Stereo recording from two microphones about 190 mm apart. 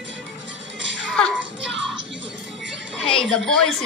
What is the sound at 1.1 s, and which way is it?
Music, 5° left (ahead or behind).